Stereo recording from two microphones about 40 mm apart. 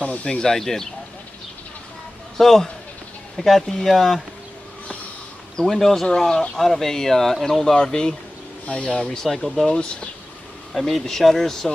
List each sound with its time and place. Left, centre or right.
0.2 s speech: left
0.5 s speech: centre
2.3 s speech: centre
5.6 s speech: centre
9.3 s speech: centre
9.7 s speech: left